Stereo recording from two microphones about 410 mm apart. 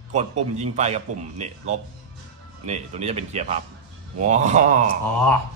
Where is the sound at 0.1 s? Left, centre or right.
Centre.